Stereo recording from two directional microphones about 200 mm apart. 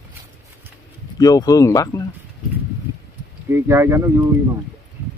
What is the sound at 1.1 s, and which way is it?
Speech, 20° left (ahead or behind).